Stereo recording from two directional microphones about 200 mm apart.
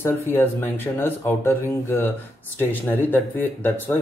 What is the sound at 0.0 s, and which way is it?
Speech, 10° left (ahead or behind).